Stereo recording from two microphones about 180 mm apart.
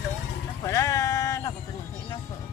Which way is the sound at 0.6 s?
15° left (ahead or behind).